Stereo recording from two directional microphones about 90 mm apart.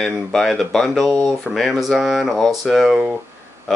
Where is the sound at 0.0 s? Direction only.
5° left (ahead or behind).